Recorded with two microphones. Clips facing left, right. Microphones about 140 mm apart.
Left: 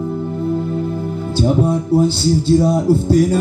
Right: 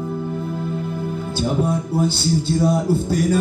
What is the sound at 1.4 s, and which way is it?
Speech, 30° left (ahead or behind).